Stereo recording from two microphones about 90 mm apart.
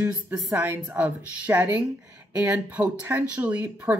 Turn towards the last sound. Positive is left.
turn(degrees=-15)  # may be behind; listen again after turning